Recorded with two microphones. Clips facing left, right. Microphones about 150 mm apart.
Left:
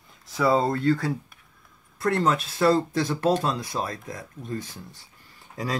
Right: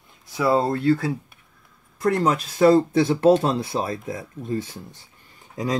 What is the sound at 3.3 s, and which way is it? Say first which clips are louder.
Speech: right 6 dB; 25° right (ahead or behind).